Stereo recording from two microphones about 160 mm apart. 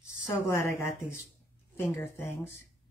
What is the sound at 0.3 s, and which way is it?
A woman's voice, 15° left (ahead or behind).